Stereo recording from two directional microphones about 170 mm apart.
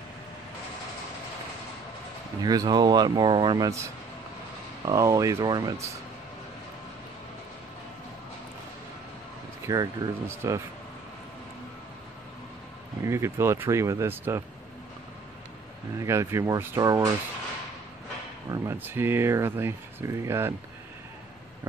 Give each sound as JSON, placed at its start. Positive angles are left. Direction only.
{"t": 2.4, "sound": "speech", "side_deg": -25}
{"t": 9.7, "sound": "speech", "side_deg": -15}
{"t": 13.0, "sound": "speech", "side_deg": -15}
{"t": 16.0, "sound": "speech", "side_deg": -15}
{"t": 18.5, "sound": "speech", "side_deg": -15}